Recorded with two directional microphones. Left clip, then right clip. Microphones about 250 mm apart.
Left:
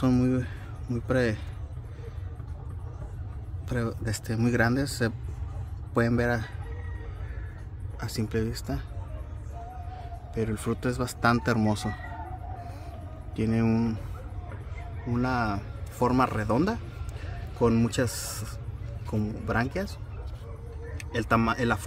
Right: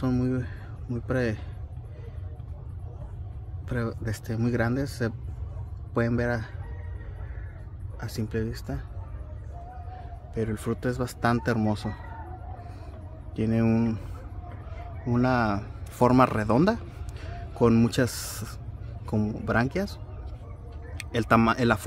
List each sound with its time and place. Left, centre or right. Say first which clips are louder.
0.0 s speech: left 3 dB; centre
3.6 s speech: even; centre
8.0 s speech: left 1 dB; centre
10.3 s speech: even; centre
13.4 s speech: right 1 dB; centre
15.0 s a man's voice: right 3 dB; right
21.0 s speech: right 3 dB; right